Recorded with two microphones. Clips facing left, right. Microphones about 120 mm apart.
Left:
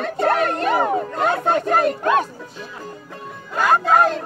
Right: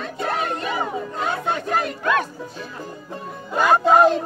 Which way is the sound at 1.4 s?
45° left (ahead or behind).